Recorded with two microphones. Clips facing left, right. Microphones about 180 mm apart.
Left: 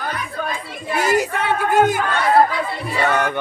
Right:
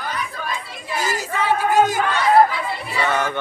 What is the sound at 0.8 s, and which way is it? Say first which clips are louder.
Speech: left 8 dB; 60° left (ahead or behind).